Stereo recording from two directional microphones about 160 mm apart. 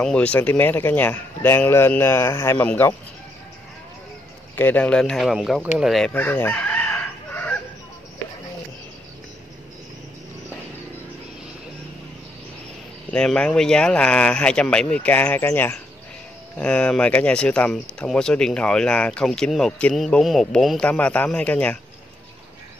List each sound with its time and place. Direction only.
0.0 s speech: 5° left (ahead or behind)
4.6 s speech: 10° left (ahead or behind)
6.1 s chicken: 10° left (ahead or behind)
13.1 s speech: 5° left (ahead or behind)